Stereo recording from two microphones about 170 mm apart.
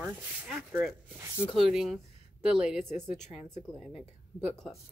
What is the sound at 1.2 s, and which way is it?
Speech, 15° right (ahead or behind).